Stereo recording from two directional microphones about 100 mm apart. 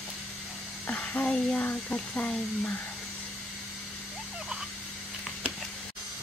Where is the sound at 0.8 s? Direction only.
15° left (ahead or behind).